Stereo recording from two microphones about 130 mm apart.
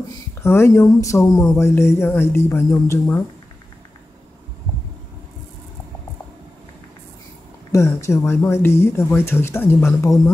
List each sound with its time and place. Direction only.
0.4 s speech: 20° left (ahead or behind)
7.7 s speech: 20° left (ahead or behind)